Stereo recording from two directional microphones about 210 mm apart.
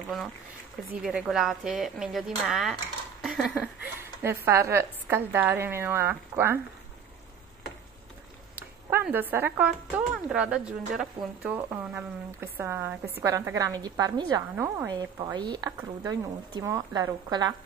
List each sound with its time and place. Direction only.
1.0 s a woman's voice: 5° right (ahead or behind)
8.9 s a woman's voice: 10° right (ahead or behind)